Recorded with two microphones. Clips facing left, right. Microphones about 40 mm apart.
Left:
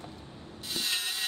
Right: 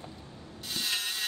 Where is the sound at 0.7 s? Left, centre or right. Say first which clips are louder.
Even; centre.